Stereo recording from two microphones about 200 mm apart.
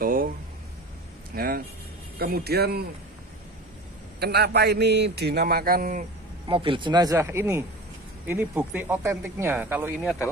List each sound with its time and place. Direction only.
0.0 s a sound: 45° right (ahead or behind)
1.3 s speech: 50° right (ahead or behind)
4.2 s a man's voice: 55° right (ahead or behind)
6.4 s speech: 25° right (ahead or behind); by 9.9 s 10° right (ahead or behind)